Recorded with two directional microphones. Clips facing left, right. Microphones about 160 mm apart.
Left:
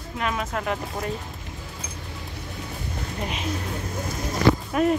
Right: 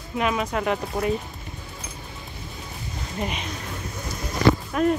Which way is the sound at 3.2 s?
Centre (ahead or behind).